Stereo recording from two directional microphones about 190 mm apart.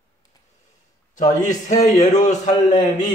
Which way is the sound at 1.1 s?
40° left (ahead or behind).